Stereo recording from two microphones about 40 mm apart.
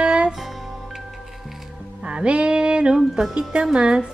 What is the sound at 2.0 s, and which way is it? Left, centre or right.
Music, right.